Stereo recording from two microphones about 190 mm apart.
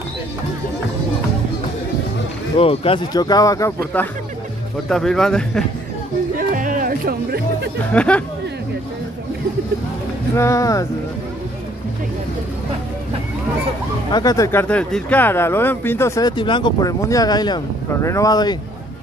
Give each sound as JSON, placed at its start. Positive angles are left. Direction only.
{"t": 2.6, "sound": "speech", "side_deg": 30}
{"t": 6.3, "sound": "chatter", "side_deg": -45}
{"t": 7.9, "sound": "speech", "side_deg": 5}
{"t": 10.3, "sound": "speech", "side_deg": 15}
{"t": 14.1, "sound": "speech", "side_deg": 20}